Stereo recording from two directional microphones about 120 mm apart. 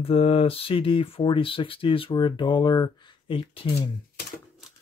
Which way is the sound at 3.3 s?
45° left (ahead or behind).